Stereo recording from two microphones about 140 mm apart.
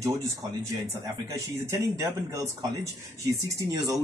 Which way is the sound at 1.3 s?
25° right (ahead or behind).